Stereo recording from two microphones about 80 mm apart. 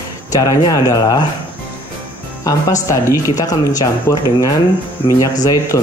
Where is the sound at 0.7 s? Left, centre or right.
Left.